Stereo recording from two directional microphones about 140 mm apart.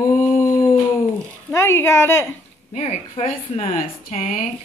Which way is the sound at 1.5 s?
20° left (ahead or behind).